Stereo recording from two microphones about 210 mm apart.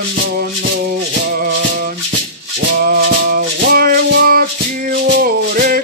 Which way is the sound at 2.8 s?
45° right (ahead or behind).